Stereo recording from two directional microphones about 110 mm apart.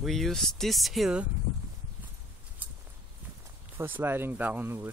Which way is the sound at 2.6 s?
15° right (ahead or behind).